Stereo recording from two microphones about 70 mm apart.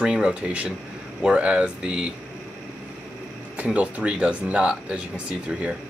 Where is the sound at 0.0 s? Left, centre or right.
Centre.